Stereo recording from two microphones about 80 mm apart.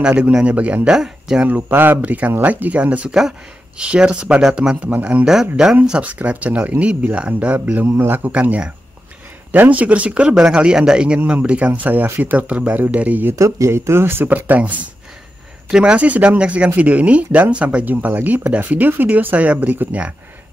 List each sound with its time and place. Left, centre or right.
0.0 s speech: centre
1.5 s speech: right; by 5.8 s centre
5.9 s speech: centre
8.3 s speech: centre
13.3 s speech: right; by 20.2 s centre